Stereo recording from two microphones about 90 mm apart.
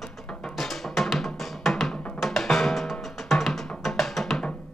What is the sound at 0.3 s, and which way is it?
Music, 5° left (ahead or behind).